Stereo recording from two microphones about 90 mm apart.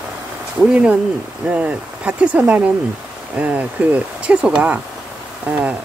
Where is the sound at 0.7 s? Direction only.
15° right (ahead or behind).